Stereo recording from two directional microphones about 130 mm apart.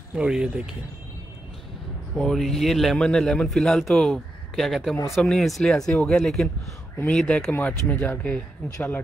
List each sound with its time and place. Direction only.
0.1 s speech: 5° right (ahead or behind)
2.1 s speech: centre (ahead or behind)
7.5 s speech: 15° left (ahead or behind)